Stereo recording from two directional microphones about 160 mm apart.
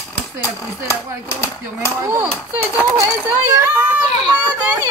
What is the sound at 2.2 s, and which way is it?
A woman's voice, 10° right (ahead or behind).